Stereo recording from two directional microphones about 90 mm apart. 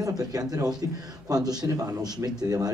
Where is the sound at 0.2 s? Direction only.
45° right (ahead or behind).